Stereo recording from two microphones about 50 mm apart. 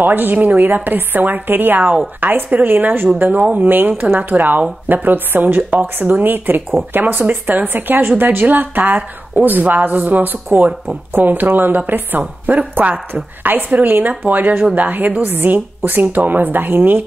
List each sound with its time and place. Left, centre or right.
0.0 s a woman's voice: right
3.2 s speech: right
13.1 s speech: right